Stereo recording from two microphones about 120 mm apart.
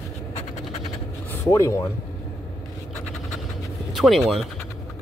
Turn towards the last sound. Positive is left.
turn(degrees=0)  # may be behind; listen again after turning